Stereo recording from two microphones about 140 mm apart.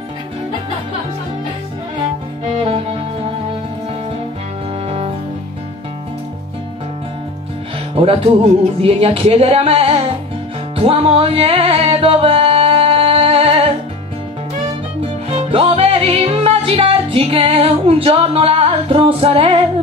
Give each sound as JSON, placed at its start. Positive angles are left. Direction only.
{"t": 2.5, "sound": "music", "side_deg": -40}
{"t": 4.8, "sound": "music", "side_deg": -45}
{"t": 7.9, "sound": "music", "side_deg": -45}
{"t": 8.8, "sound": "speech", "side_deg": -45}
{"t": 10.8, "sound": "music", "side_deg": -45}
{"t": 15.2, "sound": "music", "side_deg": -45}